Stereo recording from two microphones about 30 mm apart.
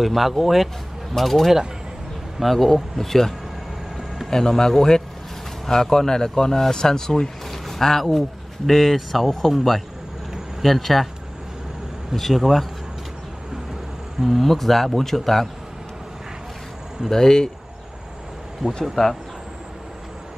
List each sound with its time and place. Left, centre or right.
0.0 s speech: centre; by 7.2 s left
7.5 s a sound: centre
8.6 s speech: centre
12.4 s speech: centre
14.2 s speech: centre
17.1 s speech: centre
18.6 s speech: centre